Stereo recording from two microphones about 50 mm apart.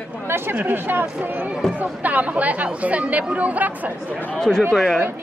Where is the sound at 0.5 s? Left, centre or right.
Right.